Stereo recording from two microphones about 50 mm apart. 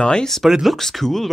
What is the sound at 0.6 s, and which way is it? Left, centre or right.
Speech, centre.